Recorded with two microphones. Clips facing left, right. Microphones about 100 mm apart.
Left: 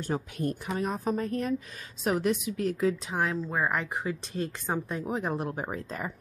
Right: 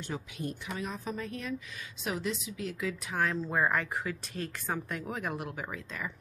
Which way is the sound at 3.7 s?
20° left (ahead or behind).